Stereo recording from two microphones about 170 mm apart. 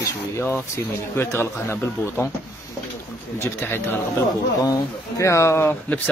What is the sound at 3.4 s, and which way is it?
Speech, 15° left (ahead or behind).